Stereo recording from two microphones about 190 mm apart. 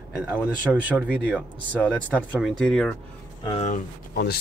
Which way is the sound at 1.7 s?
10° left (ahead or behind).